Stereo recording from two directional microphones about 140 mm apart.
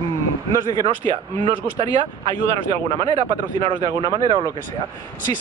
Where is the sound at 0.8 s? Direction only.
35° right (ahead or behind).